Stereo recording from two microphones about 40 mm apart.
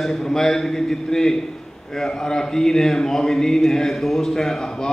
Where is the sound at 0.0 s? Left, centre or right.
Centre.